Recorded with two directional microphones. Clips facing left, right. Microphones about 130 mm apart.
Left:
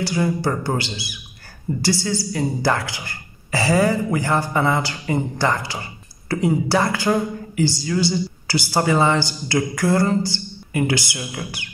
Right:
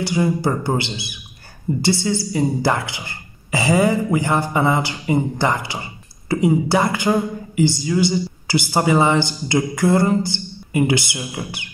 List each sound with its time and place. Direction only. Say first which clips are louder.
0.0 s speech: right 2 dB; 20° right (ahead or behind)